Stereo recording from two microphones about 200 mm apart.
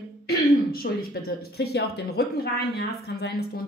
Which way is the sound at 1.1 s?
55° left (ahead or behind).